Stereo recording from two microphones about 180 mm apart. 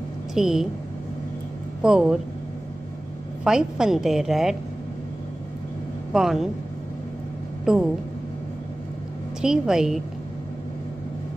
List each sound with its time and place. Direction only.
0.3 s a woman's voice: 5° right (ahead or behind)
1.8 s a woman's voice: 5° right (ahead or behind)
3.4 s a woman's voice: 5° right (ahead or behind)
6.1 s a woman's voice: centre (ahead or behind)
7.6 s a woman's voice: 5° right (ahead or behind)
9.4 s a woman's voice: 5° right (ahead or behind)